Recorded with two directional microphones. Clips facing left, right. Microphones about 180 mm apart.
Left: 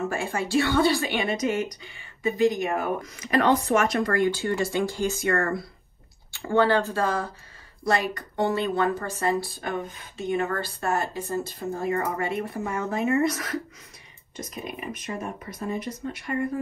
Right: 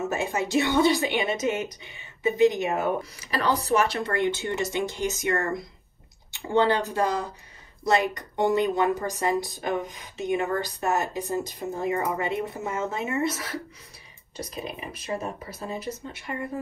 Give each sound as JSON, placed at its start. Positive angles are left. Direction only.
{"t": 0.1, "sound": "a woman's voice", "side_deg": -20}
{"t": 3.2, "sound": "a woman's voice", "side_deg": -35}